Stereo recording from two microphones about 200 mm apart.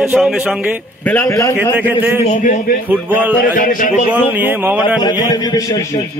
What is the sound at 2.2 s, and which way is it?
Speech, 40° left (ahead or behind).